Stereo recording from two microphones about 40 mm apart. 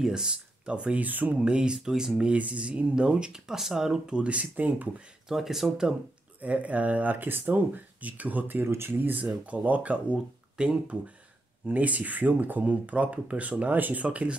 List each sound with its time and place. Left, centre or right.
0.0 s speech: centre
0.9 s speech: right
1.4 s speech: right
2.3 s speech: right; by 4.0 s centre
4.1 s speech: right
5.3 s speech: centre
6.4 s speech: right
8.6 s speech: right
9.1 s speech: right
10.1 s speech: right
11.6 s speech: right
14.0 s speech: right